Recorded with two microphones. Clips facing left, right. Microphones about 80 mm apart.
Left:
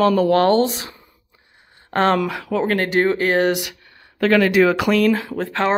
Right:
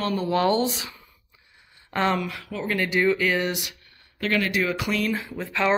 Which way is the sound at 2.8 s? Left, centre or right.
Left.